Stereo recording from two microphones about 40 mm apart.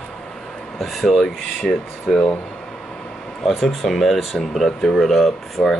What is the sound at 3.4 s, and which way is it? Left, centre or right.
Speech, centre.